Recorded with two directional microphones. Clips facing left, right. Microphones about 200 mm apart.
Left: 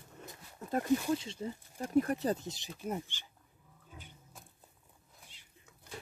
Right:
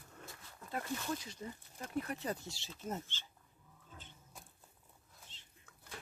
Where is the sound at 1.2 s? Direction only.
25° left (ahead or behind).